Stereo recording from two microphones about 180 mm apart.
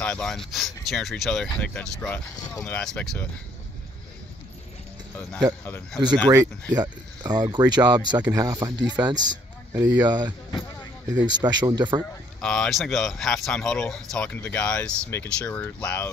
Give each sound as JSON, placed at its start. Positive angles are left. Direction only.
{"t": 0.0, "sound": "speech", "side_deg": 5}
{"t": 5.7, "sound": "speech", "side_deg": 5}
{"t": 6.0, "sound": "a man's voice", "side_deg": -25}
{"t": 11.4, "sound": "speech", "side_deg": -25}
{"t": 12.4, "sound": "speech", "side_deg": 5}